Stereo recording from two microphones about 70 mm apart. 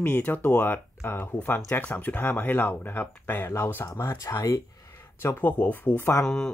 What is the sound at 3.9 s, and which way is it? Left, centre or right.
Speech, left.